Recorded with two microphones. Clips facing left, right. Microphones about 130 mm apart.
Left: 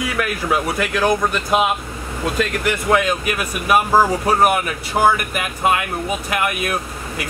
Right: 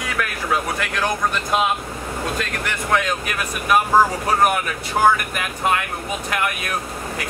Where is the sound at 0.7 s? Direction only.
5° left (ahead or behind).